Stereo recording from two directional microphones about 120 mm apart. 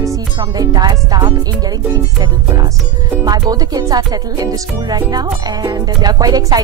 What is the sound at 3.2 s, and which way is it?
Music, 30° right (ahead or behind).